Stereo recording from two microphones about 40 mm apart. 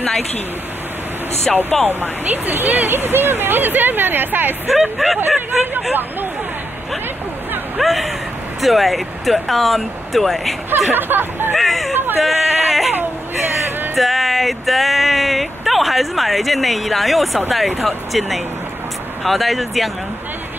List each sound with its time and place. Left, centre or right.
1.5 s speech: centre
2.2 s speech: right
4.9 s speech: centre
7.8 s speech: centre
10.9 s speech: right
11.5 s speech: centre
12.2 s a sound: centre
13.9 s a sound: centre
17.5 s speech: centre